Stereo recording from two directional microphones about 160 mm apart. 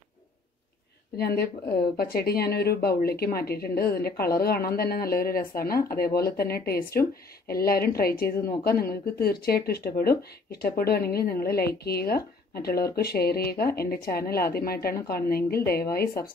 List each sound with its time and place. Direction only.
1.1 s speech: 80° left